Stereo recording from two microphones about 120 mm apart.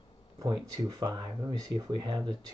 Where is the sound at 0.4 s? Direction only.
35° right (ahead or behind).